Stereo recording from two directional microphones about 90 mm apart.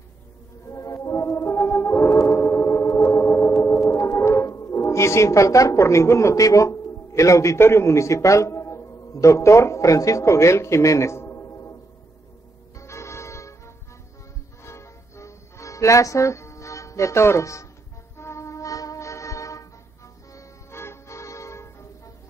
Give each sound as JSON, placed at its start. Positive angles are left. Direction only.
{"t": 0.7, "sound": "music", "side_deg": 35}
{"t": 12.7, "sound": "music", "side_deg": 30}
{"t": 14.6, "sound": "music", "side_deg": 30}